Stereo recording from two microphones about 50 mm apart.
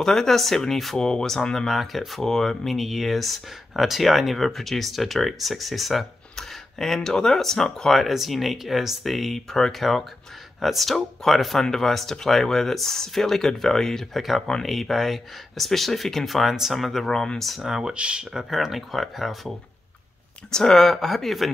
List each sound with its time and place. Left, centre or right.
0.0 s speech: centre
8.0 s speech: centre
17.6 s speech: centre
18.2 s speech: centre
20.5 s speech: centre